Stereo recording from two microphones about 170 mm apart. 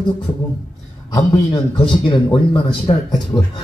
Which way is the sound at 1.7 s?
25° left (ahead or behind).